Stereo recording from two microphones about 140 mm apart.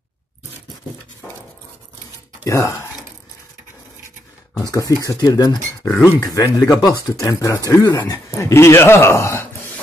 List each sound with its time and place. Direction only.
2.4 s speech: 20° left (ahead or behind)
4.6 s speech: 25° left (ahead or behind)
8.3 s speech: 20° left (ahead or behind)